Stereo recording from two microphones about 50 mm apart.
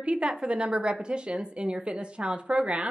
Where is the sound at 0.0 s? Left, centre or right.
Centre.